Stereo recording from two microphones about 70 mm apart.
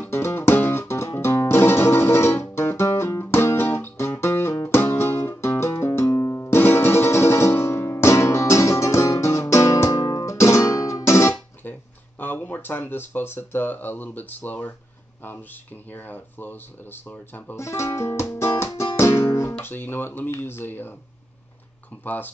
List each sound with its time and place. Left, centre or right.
0.1 s music: left
9.9 s music: left
10.2 s guitar: left
12.2 s speech: left
15.9 s speech: left
17.6 s music: left
19.6 s speech: left
22.0 s speech: left